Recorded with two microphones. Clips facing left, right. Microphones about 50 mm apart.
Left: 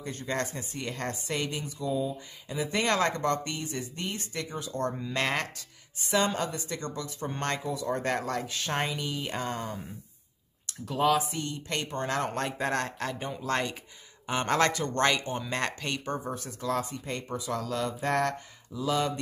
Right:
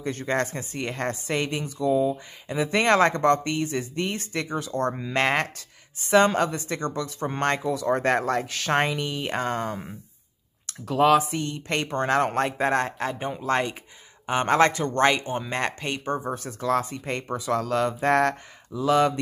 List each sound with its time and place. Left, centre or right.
0.0 s speech: right
2.9 s speech: right
3.2 s speech: right
5.1 s speech: right
5.9 s speech: right
8.5 s speech: right
12.7 s speech: right
16.3 s speech: right